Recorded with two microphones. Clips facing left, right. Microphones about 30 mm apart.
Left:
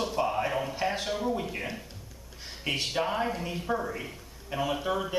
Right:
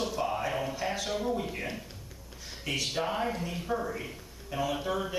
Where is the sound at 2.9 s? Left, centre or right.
Centre.